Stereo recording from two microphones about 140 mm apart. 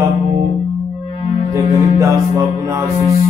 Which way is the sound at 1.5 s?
20° right (ahead or behind).